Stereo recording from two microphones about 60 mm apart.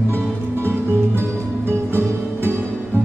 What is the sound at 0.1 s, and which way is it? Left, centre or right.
Music, right.